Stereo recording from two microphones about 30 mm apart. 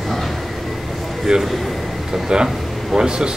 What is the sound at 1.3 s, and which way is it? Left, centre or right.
Speech, right.